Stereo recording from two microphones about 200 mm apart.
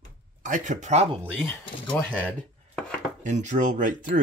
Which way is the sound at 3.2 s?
35° right (ahead or behind).